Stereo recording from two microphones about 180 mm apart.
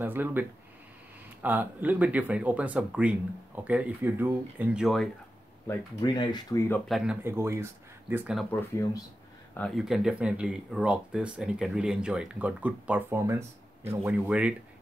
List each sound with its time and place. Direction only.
0.0 s speech: 10° right (ahead or behind)
5.7 s speech: 20° left (ahead or behind)
6.9 s speech: 5° right (ahead or behind)
8.4 s speech: 10° left (ahead or behind); by 14.5 s 5° right (ahead or behind)